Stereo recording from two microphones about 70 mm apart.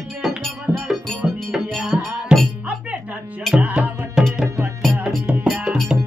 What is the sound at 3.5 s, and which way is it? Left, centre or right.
Music, centre.